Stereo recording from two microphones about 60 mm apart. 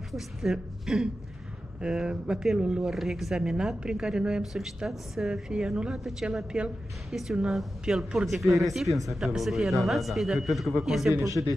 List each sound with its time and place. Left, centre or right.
0.1 s speech: centre
8.3 s speech: centre
11.4 s speech: centre